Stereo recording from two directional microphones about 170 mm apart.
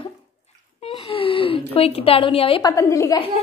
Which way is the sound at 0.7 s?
35° left (ahead or behind).